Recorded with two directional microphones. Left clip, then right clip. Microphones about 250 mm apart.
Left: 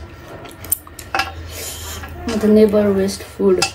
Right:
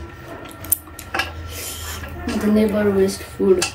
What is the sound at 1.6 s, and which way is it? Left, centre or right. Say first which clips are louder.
Filing: even; centre.